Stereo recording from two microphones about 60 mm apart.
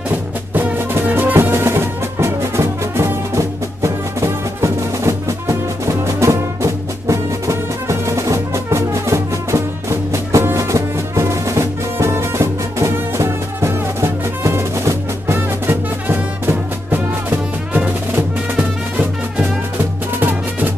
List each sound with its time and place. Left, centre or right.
1.0 s music: right
18.6 s music: centre
20.2 s music: right